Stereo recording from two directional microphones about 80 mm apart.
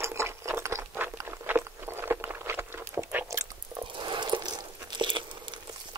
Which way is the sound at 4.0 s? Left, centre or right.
Right.